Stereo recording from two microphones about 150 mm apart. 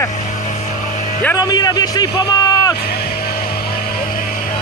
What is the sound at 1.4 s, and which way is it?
A man's voice, 25° left (ahead or behind).